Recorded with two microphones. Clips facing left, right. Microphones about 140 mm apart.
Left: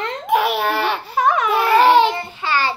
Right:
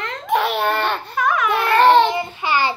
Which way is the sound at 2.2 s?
15° right (ahead or behind).